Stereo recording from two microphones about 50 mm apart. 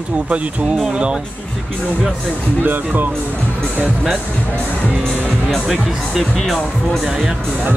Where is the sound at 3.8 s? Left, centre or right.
Centre.